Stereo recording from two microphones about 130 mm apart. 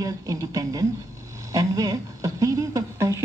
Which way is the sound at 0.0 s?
25° right (ahead or behind).